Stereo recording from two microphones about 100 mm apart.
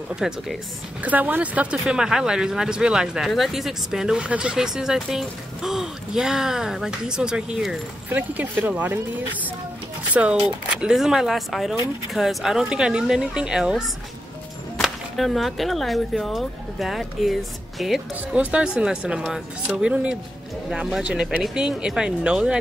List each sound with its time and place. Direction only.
0.1 s speech: 5° right (ahead or behind)
1.0 s speech: 15° right (ahead or behind)
8.1 s speech: 15° right (ahead or behind)
10.1 s speech: 15° right (ahead or behind)